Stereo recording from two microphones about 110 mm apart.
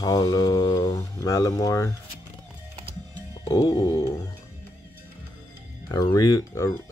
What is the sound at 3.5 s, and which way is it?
Music, 35° left (ahead or behind).